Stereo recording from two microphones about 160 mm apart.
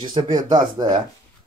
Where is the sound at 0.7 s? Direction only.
25° right (ahead or behind).